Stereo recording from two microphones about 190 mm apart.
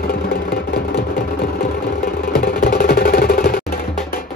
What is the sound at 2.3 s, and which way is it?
Music, 50° left (ahead or behind).